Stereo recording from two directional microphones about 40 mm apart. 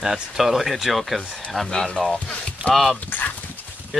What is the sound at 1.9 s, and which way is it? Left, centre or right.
Speech, centre.